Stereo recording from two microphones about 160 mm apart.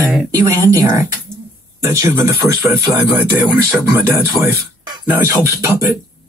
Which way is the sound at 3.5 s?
10° right (ahead or behind).